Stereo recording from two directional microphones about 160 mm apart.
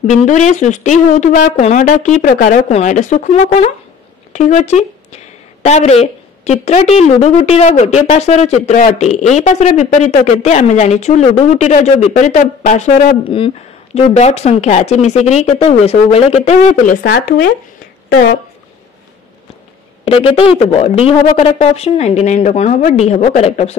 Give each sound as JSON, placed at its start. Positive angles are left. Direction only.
{"t": 0.0, "sound": "a woman's voice", "side_deg": 50}
{"t": 20.1, "sound": "a woman's voice", "side_deg": 35}